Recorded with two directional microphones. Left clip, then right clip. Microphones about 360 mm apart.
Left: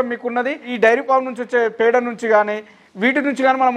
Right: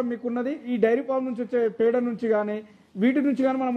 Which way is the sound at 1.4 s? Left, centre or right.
Left.